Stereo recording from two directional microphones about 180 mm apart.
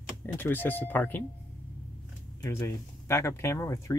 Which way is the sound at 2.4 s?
15° left (ahead or behind).